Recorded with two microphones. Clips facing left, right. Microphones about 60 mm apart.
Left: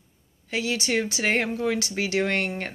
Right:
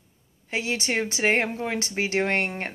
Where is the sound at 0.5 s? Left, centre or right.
Right.